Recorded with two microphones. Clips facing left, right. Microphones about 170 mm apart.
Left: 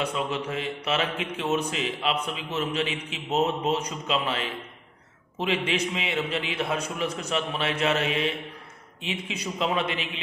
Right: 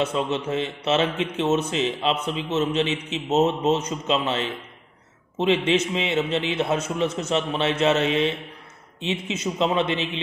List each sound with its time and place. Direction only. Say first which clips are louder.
0.0 s a man's voice: right 4 dB; 25° right (ahead or behind)
5.7 s a man's voice: right 6 dB; 25° right (ahead or behind)